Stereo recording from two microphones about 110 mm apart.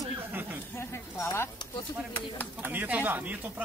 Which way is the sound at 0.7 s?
20° left (ahead or behind).